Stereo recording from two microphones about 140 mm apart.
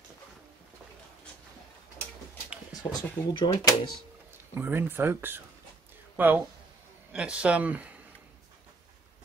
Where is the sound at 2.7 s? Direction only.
30° left (ahead or behind).